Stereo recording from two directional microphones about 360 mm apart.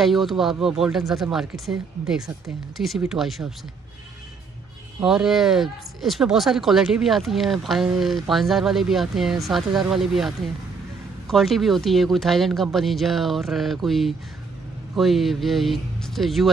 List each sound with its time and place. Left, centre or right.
0.0 s speech: centre
5.0 s speech: centre